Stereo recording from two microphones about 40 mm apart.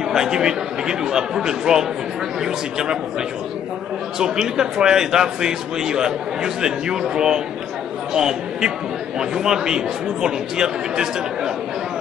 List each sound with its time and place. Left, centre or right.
0.1 s a man's voice: centre
4.2 s a man's voice: centre